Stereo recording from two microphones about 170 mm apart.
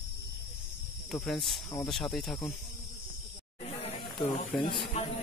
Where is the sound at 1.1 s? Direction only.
5° left (ahead or behind).